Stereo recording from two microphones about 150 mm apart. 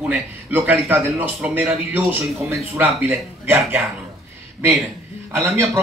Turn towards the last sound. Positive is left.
turn(degrees=-15)  # may be behind; listen again after turning